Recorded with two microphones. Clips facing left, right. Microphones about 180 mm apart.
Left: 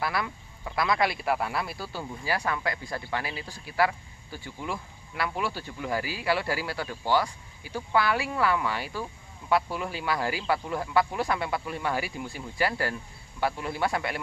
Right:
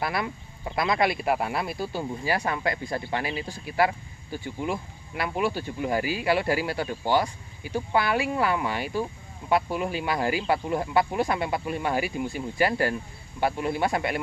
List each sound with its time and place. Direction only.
0.0 s speech: 20° right (ahead or behind)